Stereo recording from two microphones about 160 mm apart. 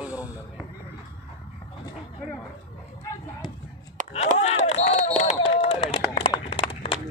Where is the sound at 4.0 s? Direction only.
55° right (ahead or behind).